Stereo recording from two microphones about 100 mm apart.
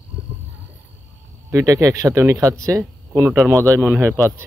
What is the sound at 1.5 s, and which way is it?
Speech, 30° right (ahead or behind).